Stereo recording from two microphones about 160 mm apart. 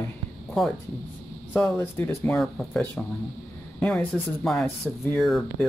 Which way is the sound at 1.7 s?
15° left (ahead or behind).